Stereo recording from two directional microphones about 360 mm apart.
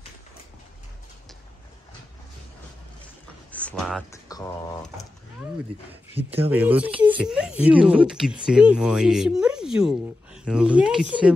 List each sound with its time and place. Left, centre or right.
3.5 s speech: centre
6.5 s speech: centre